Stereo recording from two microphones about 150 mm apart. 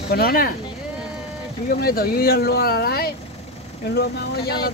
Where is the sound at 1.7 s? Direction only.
90° left.